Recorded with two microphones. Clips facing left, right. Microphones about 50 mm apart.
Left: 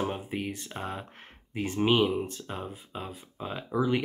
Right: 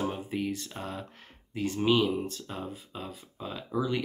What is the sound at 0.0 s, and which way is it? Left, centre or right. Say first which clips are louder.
Speech: even; left.